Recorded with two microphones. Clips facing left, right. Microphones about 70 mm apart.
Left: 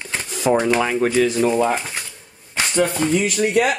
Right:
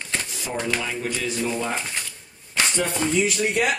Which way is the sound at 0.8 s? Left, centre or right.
Left.